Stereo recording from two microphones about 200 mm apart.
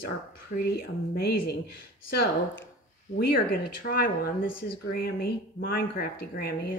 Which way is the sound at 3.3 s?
50° left (ahead or behind).